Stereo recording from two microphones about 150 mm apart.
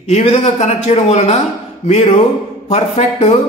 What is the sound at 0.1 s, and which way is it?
Speech, 50° left (ahead or behind).